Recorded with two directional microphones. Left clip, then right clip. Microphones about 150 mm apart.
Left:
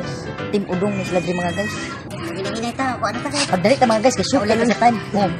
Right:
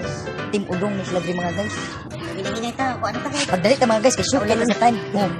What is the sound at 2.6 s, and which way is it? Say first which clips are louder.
Speech: left 2 dB; 10° left (ahead or behind).